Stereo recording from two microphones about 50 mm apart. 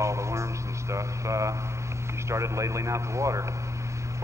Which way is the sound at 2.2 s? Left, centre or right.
Right.